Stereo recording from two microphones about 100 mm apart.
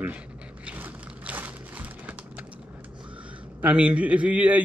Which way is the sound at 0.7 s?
15° right (ahead or behind).